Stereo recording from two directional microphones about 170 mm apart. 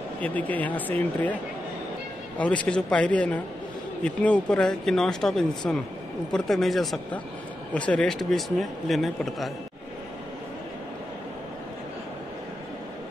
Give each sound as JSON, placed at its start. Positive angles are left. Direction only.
{"t": 0.2, "sound": "speech", "side_deg": 10}
{"t": 2.3, "sound": "a man's voice", "side_deg": 5}